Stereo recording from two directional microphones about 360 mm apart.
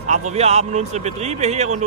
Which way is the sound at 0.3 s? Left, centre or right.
Centre.